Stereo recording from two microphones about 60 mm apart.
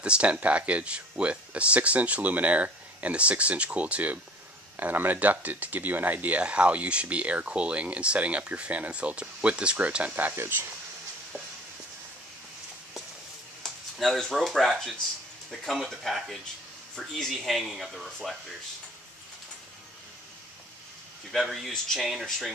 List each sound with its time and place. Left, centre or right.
0.0 s speech: centre; by 10.7 s right
13.6 s speech: centre
21.3 s speech: centre